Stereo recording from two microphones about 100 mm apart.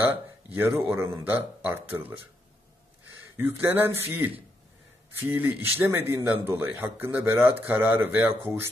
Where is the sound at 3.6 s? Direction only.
25° right (ahead or behind).